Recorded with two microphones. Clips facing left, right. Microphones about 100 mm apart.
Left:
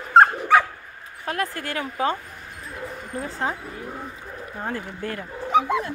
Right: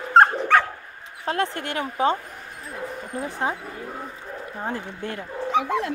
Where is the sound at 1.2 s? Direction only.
25° right (ahead or behind).